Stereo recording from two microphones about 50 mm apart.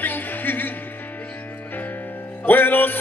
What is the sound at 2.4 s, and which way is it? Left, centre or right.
Music, left.